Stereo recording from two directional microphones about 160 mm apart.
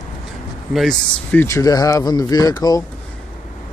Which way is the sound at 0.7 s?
5° left (ahead or behind).